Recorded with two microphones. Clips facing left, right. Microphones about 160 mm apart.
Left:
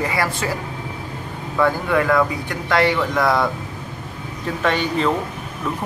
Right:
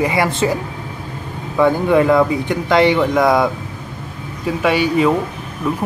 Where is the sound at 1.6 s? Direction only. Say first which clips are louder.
Right 5 dB; 20° right (ahead or behind).